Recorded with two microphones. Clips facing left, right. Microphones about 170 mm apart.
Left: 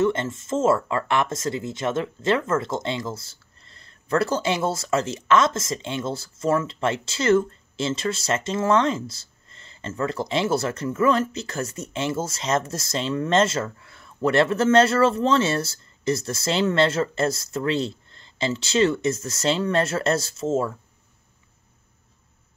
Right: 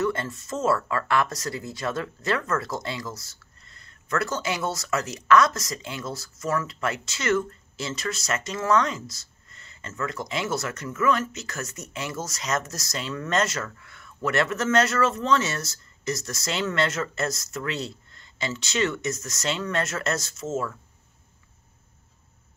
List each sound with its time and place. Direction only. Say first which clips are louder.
0.0 s speech: left 4 dB; 25° left (ahead or behind)